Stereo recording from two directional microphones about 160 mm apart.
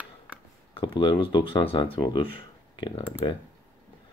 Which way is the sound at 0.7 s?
30° left (ahead or behind).